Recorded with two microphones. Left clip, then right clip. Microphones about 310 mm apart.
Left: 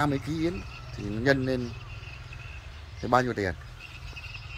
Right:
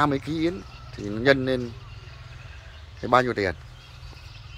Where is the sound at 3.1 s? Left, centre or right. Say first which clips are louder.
Right 4 dB; centre.